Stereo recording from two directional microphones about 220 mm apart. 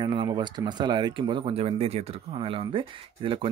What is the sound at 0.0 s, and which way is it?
Speech, 20° right (ahead or behind).